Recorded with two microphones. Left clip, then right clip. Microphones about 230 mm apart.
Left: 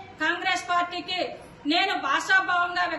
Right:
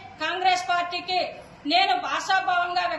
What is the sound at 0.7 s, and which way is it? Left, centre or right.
A woman's voice, centre.